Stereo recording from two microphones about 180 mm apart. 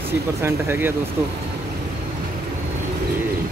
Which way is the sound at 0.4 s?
15° right (ahead or behind).